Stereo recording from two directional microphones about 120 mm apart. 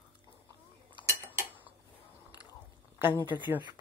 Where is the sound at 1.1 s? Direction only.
20° right (ahead or behind).